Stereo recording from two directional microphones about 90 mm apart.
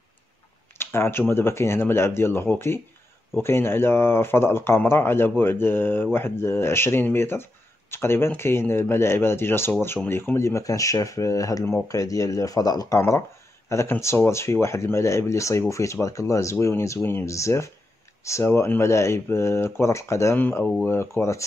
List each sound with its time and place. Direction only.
0.7 s a sound: 25° left (ahead or behind)
1.3 s speech: 30° left (ahead or behind); by 13.0 s 45° left (ahead or behind)
13.7 s speech: 30° left (ahead or behind)
20.3 s speech: 20° left (ahead or behind)